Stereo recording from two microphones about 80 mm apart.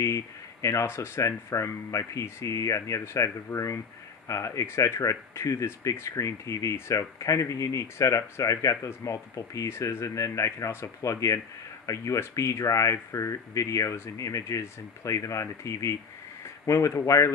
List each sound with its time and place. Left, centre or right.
0.0 s speech: left